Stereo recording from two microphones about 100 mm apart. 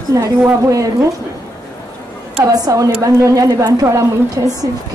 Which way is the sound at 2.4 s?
35° right (ahead or behind).